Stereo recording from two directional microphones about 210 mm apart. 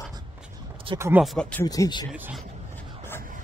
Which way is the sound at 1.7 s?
20° left (ahead or behind).